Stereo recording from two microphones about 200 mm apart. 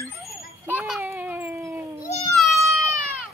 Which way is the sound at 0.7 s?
10° right (ahead or behind).